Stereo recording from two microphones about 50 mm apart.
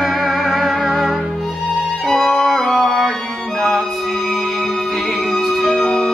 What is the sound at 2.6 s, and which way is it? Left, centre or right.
Music, centre.